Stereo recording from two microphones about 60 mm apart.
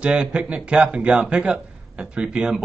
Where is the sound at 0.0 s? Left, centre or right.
Centre.